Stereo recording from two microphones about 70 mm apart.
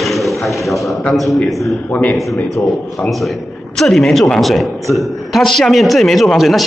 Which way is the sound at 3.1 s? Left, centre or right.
Centre.